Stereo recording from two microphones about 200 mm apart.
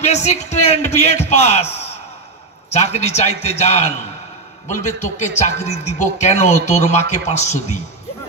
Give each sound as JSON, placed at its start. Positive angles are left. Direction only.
{"t": 0.0, "sound": "speech", "side_deg": 35}
{"t": 2.7, "sound": "speech", "side_deg": 35}